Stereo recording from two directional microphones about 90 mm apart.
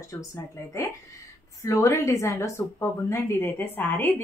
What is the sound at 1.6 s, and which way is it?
A woman's voice, 35° left (ahead or behind).